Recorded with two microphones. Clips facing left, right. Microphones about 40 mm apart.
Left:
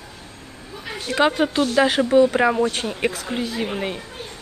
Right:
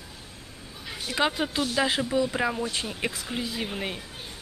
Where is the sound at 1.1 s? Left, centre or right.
Centre.